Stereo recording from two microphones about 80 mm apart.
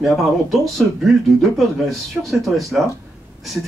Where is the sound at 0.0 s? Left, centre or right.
Centre.